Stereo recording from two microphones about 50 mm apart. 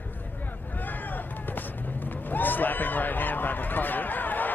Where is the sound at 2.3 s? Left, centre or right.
Left.